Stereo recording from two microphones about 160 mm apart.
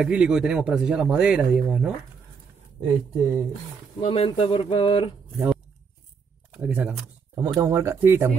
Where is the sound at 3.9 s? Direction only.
35° left (ahead or behind).